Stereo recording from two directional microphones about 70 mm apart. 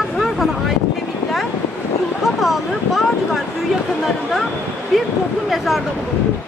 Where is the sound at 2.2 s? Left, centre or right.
Centre.